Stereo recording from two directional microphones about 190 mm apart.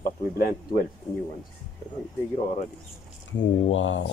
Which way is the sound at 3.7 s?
90° left.